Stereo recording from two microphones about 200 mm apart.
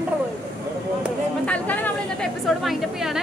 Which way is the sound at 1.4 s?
5° left (ahead or behind).